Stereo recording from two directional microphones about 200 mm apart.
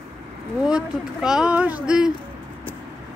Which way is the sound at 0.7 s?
5° right (ahead or behind).